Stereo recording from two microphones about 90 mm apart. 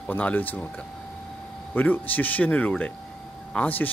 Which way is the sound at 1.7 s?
20° left (ahead or behind).